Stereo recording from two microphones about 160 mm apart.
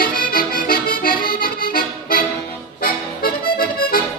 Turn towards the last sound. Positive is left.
turn(degrees=70)  # may be behind; listen again after turning